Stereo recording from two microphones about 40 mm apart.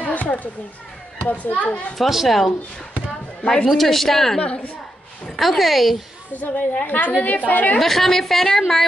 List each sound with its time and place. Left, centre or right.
0.0 s children playing: left
1.2 s a child's voice: left
2.0 s a woman's voice: centre
3.6 s a woman's voice: centre
4.4 s a woman's voice: left
5.4 s a woman's voice: centre
6.3 s a woman's voice: left
7.8 s a woman's voice: centre